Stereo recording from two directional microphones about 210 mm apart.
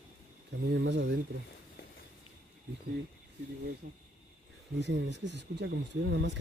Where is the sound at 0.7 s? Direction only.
55° right (ahead or behind).